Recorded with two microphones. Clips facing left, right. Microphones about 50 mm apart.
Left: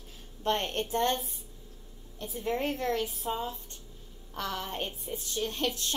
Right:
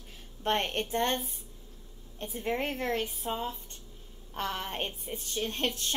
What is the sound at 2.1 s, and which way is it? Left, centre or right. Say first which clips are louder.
A woman's voice: even; right.